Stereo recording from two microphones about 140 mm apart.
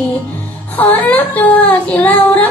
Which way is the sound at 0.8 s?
10° left (ahead or behind).